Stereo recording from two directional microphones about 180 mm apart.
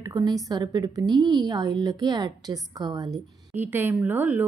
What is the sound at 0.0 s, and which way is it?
A woman's voice, 20° right (ahead or behind).